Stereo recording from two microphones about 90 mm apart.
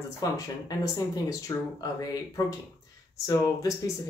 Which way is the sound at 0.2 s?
40° left (ahead or behind).